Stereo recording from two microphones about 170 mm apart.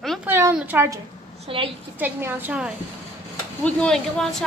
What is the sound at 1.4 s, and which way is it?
Speech, 35° right (ahead or behind).